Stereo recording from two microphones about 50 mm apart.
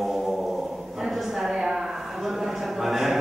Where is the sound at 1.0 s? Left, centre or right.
Centre.